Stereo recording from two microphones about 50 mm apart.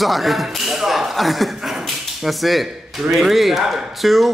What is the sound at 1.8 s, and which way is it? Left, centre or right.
A man's voice, centre.